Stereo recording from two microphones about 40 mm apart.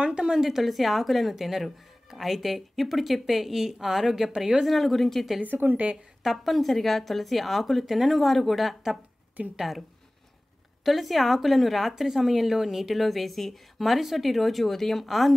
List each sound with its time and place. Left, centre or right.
0.0 s a woman's voice: right
0.3 s speech: centre
5.4 s speech: right
6.2 s speech: centre